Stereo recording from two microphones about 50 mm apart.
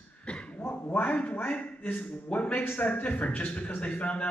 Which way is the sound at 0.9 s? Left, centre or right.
Left.